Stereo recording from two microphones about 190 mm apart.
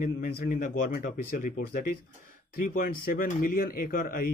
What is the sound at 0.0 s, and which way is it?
Speech, 45° left (ahead or behind).